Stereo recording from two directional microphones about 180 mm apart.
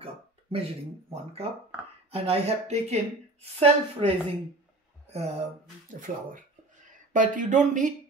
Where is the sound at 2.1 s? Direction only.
35° right (ahead or behind).